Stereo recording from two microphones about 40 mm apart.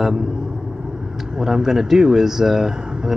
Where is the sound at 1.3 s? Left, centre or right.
Centre.